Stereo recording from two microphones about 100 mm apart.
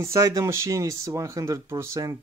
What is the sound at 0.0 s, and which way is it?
Speech, 30° right (ahead or behind).